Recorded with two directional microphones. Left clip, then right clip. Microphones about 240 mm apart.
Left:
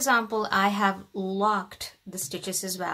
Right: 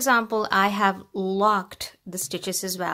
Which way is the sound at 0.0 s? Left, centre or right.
Right.